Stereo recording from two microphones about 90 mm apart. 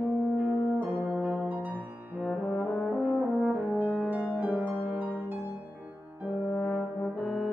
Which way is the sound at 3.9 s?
15° right (ahead or behind).